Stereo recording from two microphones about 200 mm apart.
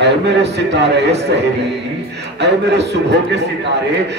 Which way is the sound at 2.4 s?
55° right (ahead or behind).